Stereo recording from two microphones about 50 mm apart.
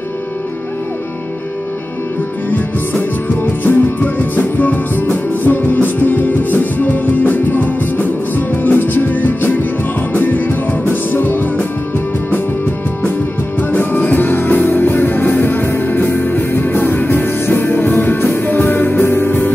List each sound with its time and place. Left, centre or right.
2.5 s music: left
13.6 s music: left